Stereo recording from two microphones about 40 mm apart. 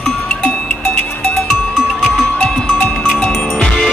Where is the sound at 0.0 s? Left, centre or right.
Left.